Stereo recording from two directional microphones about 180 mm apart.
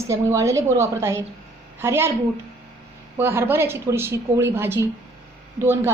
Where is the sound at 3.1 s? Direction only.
15° right (ahead or behind).